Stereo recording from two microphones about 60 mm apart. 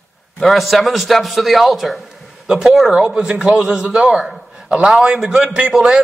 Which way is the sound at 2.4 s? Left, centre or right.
Centre.